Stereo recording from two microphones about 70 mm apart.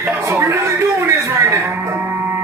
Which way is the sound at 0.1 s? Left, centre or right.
Right.